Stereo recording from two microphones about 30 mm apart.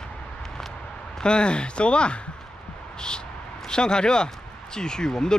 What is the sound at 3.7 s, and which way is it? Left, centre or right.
Speech, left.